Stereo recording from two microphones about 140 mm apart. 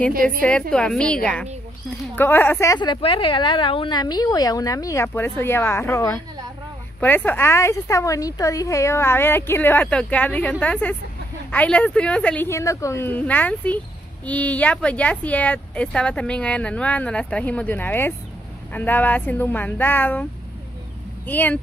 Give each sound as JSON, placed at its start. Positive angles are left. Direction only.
{"t": 0.4, "sound": "speech", "side_deg": 5}
{"t": 2.8, "sound": "a woman's voice", "side_deg": 35}
{"t": 12.4, "sound": "speech", "side_deg": 20}
{"t": 21.3, "sound": "speech", "side_deg": 10}